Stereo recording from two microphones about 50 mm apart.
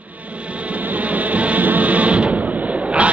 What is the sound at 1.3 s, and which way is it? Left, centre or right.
Music, right.